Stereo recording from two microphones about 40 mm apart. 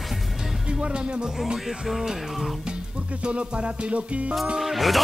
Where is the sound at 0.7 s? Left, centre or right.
Right.